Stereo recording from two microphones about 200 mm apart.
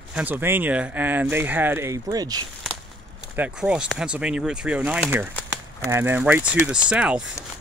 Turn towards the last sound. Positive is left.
turn(degrees=-5)  # may be behind; listen again after turning